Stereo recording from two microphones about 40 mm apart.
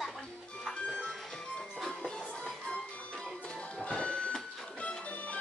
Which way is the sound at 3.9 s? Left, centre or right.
Left.